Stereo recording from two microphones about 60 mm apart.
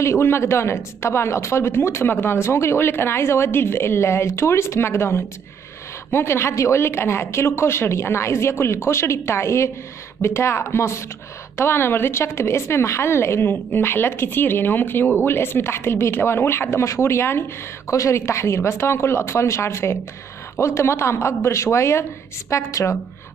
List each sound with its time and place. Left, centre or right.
0.0 s a woman's voice: left
17.9 s a woman's voice: left